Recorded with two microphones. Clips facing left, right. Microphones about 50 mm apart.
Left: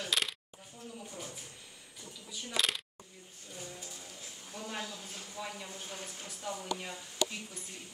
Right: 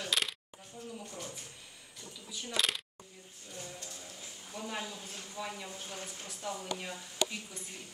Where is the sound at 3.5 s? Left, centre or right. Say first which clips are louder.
Even; centre.